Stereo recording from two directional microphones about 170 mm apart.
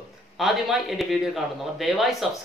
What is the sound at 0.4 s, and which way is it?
Speech, centre (ahead or behind).